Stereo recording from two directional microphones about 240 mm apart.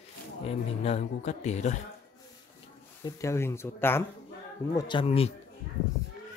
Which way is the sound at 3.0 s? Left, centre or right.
Centre.